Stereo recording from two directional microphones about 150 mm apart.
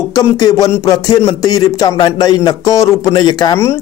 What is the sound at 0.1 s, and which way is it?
Speech, 25° left (ahead or behind).